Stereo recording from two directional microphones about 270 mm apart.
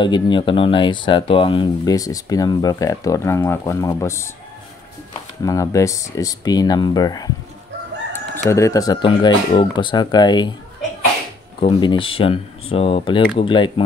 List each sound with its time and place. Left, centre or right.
0.0 s speech: centre
5.4 s speech: centre
8.5 s speech: centre
11.6 s speech: centre